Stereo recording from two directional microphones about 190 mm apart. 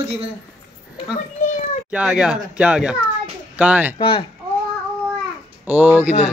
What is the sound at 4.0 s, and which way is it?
Speech, 25° left (ahead or behind).